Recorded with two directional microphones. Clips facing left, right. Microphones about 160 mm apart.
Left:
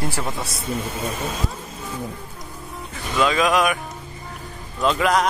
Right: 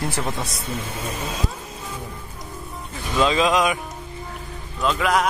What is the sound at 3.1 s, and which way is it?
Speech, 25° right (ahead or behind).